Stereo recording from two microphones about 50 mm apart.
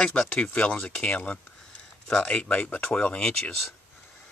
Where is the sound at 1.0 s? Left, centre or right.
Left.